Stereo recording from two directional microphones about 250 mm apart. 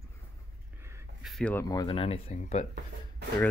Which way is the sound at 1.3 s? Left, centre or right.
Centre.